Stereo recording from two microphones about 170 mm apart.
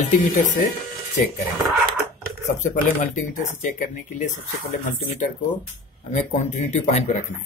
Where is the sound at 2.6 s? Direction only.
50° left (ahead or behind).